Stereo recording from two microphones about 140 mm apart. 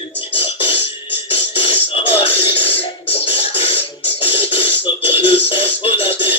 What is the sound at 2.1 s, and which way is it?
Music, 40° left (ahead or behind).